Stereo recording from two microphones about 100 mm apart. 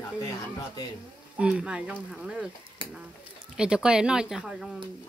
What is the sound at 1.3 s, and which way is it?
Speech, 10° right (ahead or behind).